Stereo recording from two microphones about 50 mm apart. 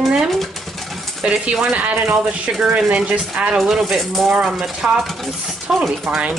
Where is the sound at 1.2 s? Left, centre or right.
Right.